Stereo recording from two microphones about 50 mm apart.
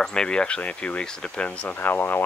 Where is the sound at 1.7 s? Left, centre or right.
Left.